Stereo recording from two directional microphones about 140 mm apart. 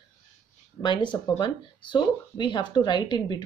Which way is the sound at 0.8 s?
35° left (ahead or behind).